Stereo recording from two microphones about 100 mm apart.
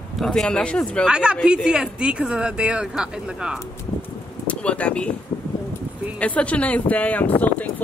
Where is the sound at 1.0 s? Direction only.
10° right (ahead or behind).